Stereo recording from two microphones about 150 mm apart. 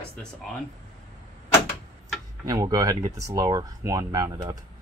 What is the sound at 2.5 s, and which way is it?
Speech, 25° right (ahead or behind).